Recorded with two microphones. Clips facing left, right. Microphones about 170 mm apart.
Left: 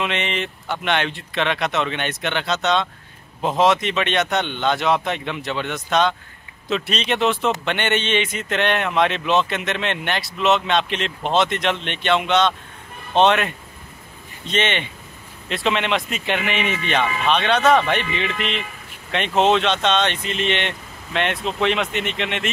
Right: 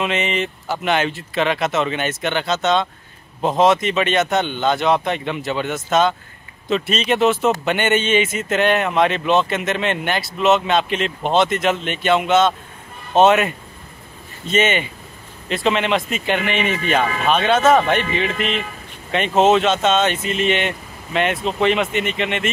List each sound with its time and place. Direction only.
0.0 s a man's voice: centre (ahead or behind)
18.0 s speech: 45° right (ahead or behind)
19.1 s a man's voice: 5° right (ahead or behind)